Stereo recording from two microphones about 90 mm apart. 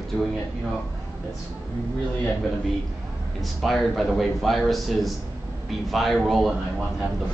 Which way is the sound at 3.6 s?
Centre (ahead or behind).